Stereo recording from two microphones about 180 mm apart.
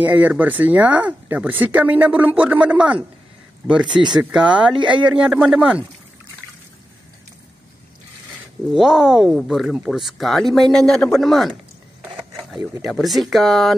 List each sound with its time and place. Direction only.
0.0 s speech: 10° right (ahead or behind)
3.8 s speech: 25° right (ahead or behind)
4.2 s speech: 5° right (ahead or behind)
8.7 s speech: centre (ahead or behind)
12.8 s speech: centre (ahead or behind)